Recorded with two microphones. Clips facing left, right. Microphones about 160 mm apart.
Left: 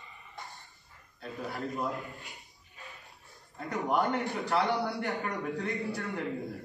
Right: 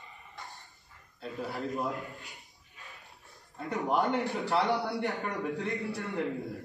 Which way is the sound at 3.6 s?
Centre (ahead or behind).